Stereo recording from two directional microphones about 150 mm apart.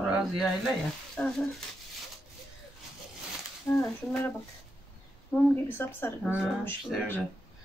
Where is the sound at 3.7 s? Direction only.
15° left (ahead or behind).